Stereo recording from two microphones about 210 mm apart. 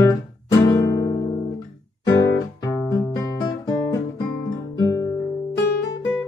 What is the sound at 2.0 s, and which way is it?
Guitar, 15° left (ahead or behind).